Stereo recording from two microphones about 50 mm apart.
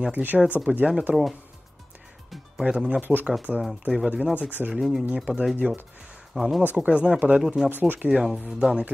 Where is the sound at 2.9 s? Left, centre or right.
Right.